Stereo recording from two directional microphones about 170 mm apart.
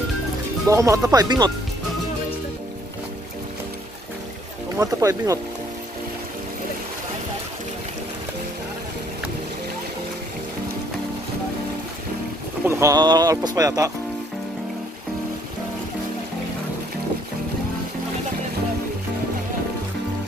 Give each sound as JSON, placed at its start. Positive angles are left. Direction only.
{"t": 0.7, "sound": "speech", "side_deg": -20}
{"t": 4.7, "sound": "speech", "side_deg": -20}
{"t": 12.6, "sound": "speech", "side_deg": -15}